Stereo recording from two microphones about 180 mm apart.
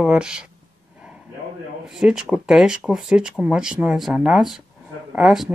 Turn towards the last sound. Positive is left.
turn(degrees=0)  # may be behind; listen again after turning